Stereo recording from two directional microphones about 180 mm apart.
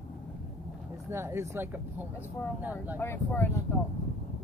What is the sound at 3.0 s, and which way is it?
Speech, 15° left (ahead or behind).